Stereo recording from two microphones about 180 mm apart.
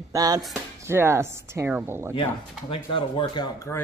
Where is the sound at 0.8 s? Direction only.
15° right (ahead or behind).